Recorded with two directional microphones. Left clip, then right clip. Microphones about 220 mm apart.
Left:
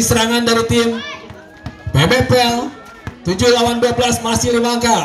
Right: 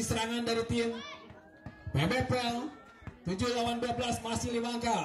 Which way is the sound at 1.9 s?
25° left (ahead or behind).